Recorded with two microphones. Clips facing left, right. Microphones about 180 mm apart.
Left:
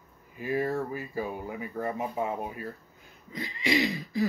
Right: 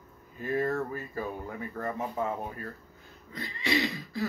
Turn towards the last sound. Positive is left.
turn(degrees=15)  # may be behind; listen again after turning